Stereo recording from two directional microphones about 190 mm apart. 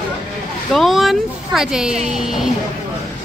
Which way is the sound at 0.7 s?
Centre (ahead or behind).